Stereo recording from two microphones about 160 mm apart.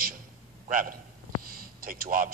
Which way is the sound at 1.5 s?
65° right (ahead or behind).